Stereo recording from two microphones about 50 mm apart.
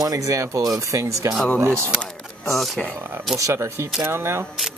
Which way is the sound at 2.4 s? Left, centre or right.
Centre.